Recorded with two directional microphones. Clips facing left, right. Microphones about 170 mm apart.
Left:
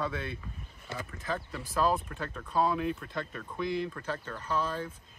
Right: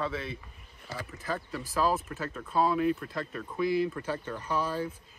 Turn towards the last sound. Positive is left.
turn(degrees=-10)  # may be behind; listen again after turning